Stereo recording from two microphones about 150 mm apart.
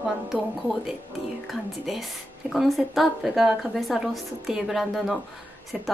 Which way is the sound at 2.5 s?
Centre (ahead or behind).